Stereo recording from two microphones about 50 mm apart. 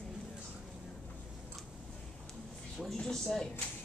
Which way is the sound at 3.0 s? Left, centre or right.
Centre.